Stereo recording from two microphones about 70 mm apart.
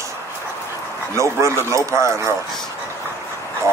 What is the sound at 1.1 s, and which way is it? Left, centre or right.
Speech, right.